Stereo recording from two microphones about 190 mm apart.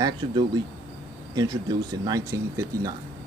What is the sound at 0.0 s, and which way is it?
Speech, 20° right (ahead or behind).